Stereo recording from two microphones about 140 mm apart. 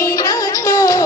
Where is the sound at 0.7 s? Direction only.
25° left (ahead or behind).